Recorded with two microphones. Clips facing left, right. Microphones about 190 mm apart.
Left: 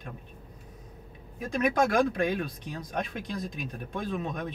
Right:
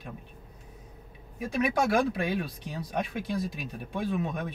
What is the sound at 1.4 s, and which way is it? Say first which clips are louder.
Speech: left 1 dB; 5° right (ahead or behind).